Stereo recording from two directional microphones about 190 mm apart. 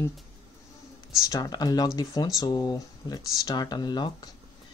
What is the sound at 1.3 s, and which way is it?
Speech, 20° left (ahead or behind).